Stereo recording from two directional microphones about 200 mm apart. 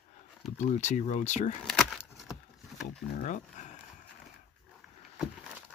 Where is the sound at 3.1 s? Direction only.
40° left (ahead or behind).